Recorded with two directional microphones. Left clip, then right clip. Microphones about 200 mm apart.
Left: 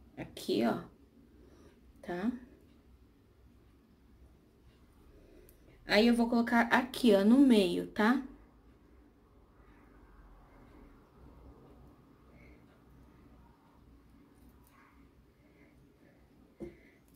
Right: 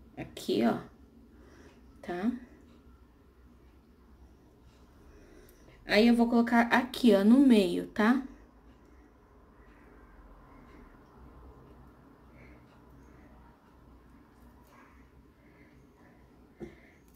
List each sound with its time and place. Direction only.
0.1 s a sound: 5° right (ahead or behind)
2.0 s speech: 10° right (ahead or behind)
5.9 s a woman's voice: centre (ahead or behind)